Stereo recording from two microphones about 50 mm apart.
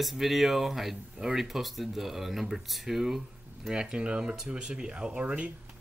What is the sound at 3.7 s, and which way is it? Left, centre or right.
Speech, centre.